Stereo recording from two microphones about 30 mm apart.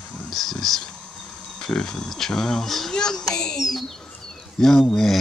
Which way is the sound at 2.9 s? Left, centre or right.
Left.